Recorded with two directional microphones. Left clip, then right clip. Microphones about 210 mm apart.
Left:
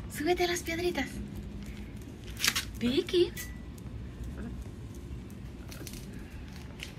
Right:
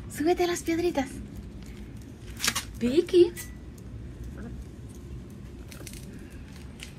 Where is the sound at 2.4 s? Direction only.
Centre (ahead or behind).